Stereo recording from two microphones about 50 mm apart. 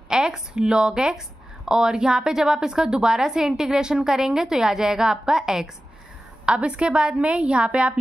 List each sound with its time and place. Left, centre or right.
0.1 s a woman's voice: centre